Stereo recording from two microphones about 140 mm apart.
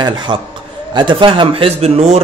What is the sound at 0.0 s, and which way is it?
A man's voice, 30° right (ahead or behind).